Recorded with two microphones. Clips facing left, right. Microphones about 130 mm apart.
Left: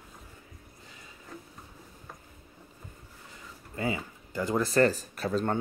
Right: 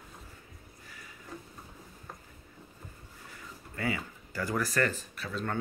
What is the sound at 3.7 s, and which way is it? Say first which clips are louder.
Speech: left 2 dB; 20° left (ahead or behind).